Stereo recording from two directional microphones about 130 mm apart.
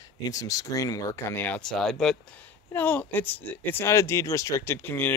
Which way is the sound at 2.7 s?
15° left (ahead or behind).